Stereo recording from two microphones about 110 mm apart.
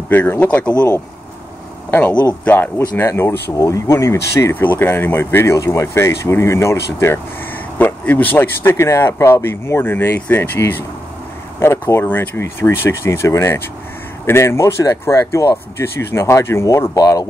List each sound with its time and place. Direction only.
0.1 s speech: 15° left (ahead or behind)
1.9 s speech: 15° left (ahead or behind); by 17.3 s 35° left (ahead or behind)